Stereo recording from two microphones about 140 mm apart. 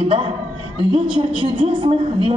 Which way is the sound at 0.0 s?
40° right (ahead or behind).